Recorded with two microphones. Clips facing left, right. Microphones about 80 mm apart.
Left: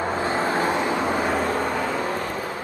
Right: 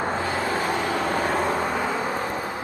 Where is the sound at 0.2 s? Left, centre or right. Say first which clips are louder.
Left 2 dB; left.